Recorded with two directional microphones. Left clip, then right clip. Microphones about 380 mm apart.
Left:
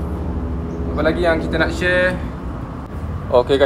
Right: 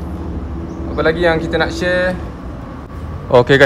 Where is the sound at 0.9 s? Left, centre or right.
Right.